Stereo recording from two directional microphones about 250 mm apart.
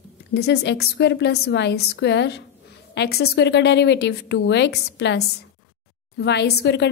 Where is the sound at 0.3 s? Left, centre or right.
Left.